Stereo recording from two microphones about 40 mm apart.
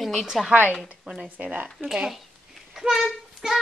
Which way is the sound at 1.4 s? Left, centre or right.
Right.